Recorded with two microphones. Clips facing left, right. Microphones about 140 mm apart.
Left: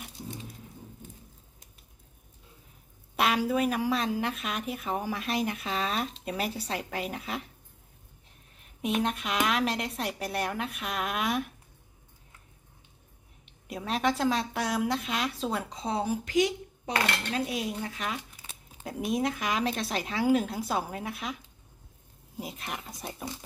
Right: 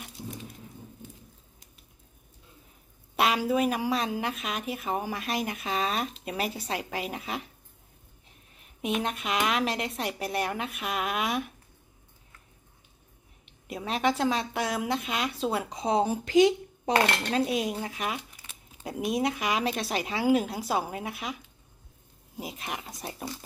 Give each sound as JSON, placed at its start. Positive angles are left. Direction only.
{"t": 3.2, "sound": "speech", "side_deg": 0}
{"t": 8.5, "sound": "speech", "side_deg": 0}
{"t": 13.7, "sound": "speech", "side_deg": 0}
{"t": 15.7, "sound": "speech", "side_deg": -15}
{"t": 16.9, "sound": "speech", "side_deg": -40}
{"t": 17.5, "sound": "speech", "side_deg": -20}
{"t": 22.4, "sound": "speech", "side_deg": -5}